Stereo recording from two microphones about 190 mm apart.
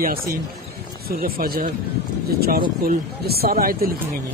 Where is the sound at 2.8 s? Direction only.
55° right (ahead or behind).